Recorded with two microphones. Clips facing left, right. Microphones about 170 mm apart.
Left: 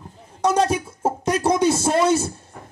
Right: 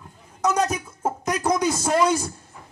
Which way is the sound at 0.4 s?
30° left (ahead or behind).